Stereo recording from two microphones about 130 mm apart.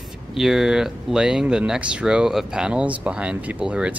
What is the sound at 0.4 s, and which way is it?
Speech, 5° right (ahead or behind).